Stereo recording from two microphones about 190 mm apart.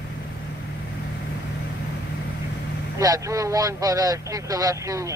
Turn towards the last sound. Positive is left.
turn(degrees=-15)  # may be behind; listen again after turning